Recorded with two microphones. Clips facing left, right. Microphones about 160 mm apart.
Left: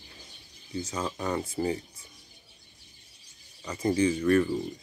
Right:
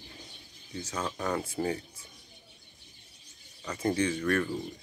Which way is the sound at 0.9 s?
10° left (ahead or behind).